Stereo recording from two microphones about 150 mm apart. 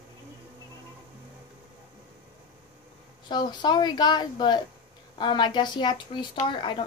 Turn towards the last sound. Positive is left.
turn(degrees=35)  # may be behind; listen again after turning